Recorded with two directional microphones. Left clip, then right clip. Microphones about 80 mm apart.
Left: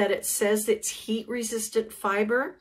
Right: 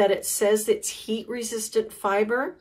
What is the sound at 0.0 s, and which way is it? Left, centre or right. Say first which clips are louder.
Speech: right 4 dB; right.